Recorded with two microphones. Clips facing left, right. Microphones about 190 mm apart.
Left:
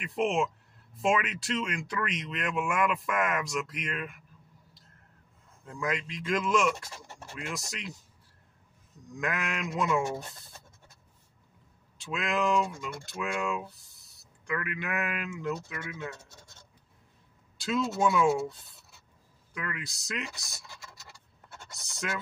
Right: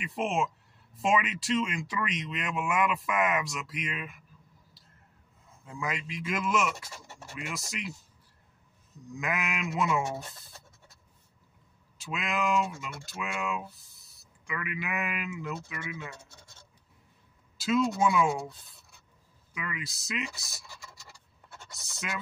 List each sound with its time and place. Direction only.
0.0 s speech: centre (ahead or behind)
5.7 s speech: 5° right (ahead or behind)
9.1 s speech: 5° right (ahead or behind)
12.0 s speech: centre (ahead or behind)
17.6 s speech: centre (ahead or behind)
21.7 s speech: centre (ahead or behind)